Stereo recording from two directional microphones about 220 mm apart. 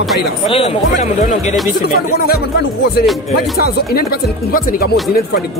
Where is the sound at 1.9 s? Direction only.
45° left (ahead or behind).